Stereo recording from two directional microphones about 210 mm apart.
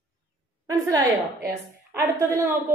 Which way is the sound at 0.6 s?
15° right (ahead or behind).